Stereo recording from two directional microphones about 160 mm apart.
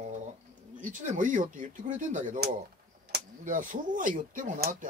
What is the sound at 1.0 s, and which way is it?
Speech, 55° right (ahead or behind).